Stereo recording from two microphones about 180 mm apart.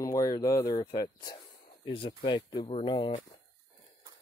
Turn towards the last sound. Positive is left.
turn(degrees=30)  # may be behind; listen again after turning